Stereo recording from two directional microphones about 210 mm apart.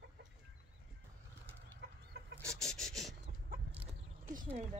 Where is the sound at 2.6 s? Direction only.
Centre (ahead or behind).